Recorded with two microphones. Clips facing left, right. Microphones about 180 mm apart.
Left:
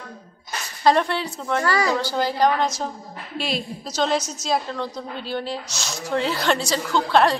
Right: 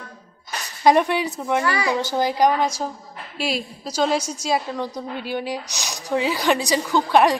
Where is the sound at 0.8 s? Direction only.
15° right (ahead or behind).